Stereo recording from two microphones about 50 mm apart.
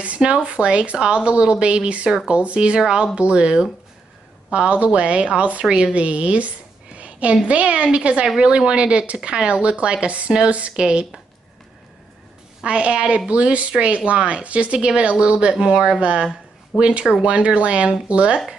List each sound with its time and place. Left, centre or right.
0.0 s speech: right
7.0 s a sound: right
7.4 s speech: right
12.6 s speech: right